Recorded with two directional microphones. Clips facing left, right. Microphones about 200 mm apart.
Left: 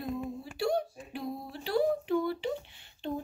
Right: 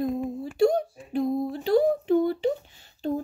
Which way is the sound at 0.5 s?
45° right (ahead or behind).